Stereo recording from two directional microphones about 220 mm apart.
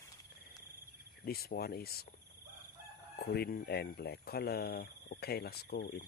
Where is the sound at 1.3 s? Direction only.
45° left (ahead or behind).